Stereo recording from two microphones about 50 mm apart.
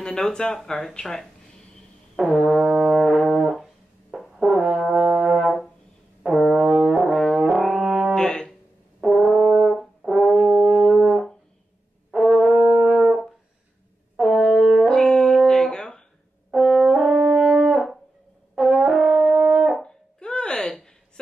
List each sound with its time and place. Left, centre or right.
0.0 s speech: centre
2.1 s brass instrument: centre
2.7 s brass instrument: centre
6.2 s music: centre
6.6 s brass instrument: centre
8.1 s music: centre
9.0 s brass instrument: centre
12.5 s brass instrument: centre
14.9 s music: centre
16.4 s brass instrument: centre
17.2 s french horn: right
18.5 s brass instrument: centre
19.3 s brass instrument: right
19.8 s a sound: centre